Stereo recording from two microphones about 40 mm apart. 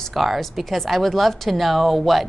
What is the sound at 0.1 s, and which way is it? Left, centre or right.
Speech, centre.